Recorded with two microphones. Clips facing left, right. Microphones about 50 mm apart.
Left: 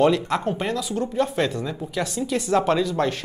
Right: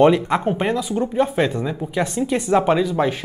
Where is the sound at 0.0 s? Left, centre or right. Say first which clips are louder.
Right 4 dB; centre.